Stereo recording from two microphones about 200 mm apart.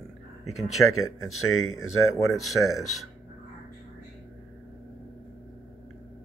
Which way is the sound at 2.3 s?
Centre (ahead or behind).